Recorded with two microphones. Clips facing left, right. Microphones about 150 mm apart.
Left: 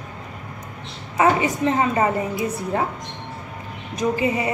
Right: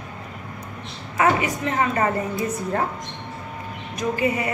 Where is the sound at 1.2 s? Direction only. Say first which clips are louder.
Left 2 dB; 20° left (ahead or behind).